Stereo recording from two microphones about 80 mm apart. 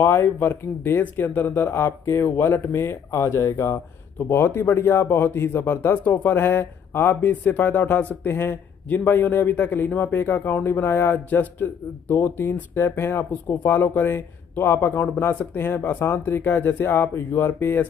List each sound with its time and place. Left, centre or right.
0.0 s speech: left